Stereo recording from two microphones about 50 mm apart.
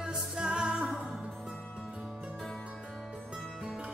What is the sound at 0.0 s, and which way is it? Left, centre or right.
Music, centre.